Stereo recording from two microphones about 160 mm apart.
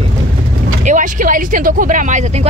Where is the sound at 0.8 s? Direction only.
50° right (ahead or behind).